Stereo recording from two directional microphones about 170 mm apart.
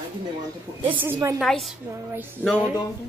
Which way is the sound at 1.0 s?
15° right (ahead or behind).